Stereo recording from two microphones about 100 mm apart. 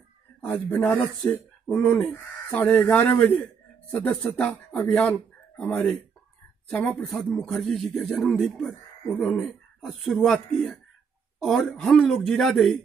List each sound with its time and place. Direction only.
0.4 s a man's voice: 15° left (ahead or behind)